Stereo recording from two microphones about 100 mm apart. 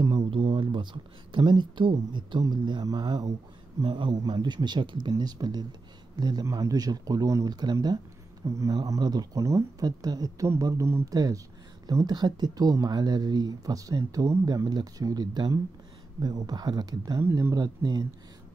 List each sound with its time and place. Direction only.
0.3 s speech: 55° right (ahead or behind); by 10.5 s 35° right (ahead or behind)
10.7 s speech: 25° right (ahead or behind)
11.1 s speech: 35° right (ahead or behind)
17.2 s speech: 25° right (ahead or behind)
17.6 s speech: 40° right (ahead or behind)